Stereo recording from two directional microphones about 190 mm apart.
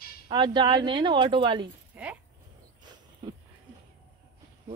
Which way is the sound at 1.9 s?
10° right (ahead or behind).